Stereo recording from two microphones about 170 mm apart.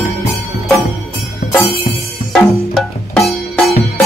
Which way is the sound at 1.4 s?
60° left (ahead or behind).